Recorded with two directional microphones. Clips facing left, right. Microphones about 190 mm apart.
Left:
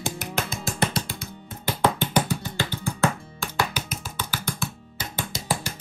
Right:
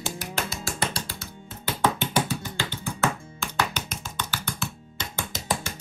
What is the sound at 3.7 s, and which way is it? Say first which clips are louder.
Music: left 1 dB; 5° left (ahead or behind).